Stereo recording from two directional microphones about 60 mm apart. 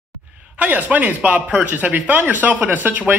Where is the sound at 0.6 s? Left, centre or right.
Right.